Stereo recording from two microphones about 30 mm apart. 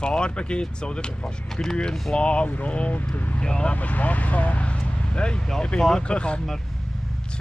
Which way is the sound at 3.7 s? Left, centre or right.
Left.